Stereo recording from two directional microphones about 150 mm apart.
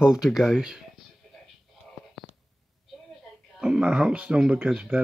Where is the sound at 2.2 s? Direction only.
Centre (ahead or behind).